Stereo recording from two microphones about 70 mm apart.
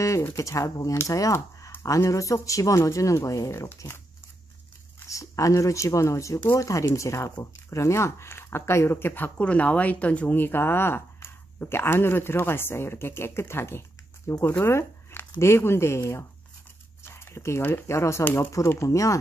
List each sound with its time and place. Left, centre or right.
0.2 s speech: left
5.0 s speech: left
9.4 s speech: centre; by 16.3 s left
17.0 s a sound: left
17.6 s speech: left